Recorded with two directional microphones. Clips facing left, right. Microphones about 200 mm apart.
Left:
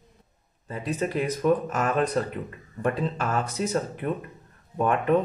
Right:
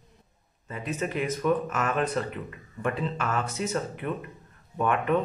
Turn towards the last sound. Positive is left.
turn(degrees=40)  # may be behind; listen again after turning